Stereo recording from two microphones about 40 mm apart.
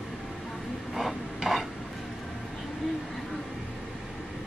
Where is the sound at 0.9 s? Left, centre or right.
Centre.